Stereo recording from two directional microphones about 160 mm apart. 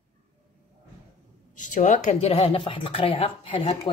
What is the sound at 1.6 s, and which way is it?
Speech, 50° left (ahead or behind).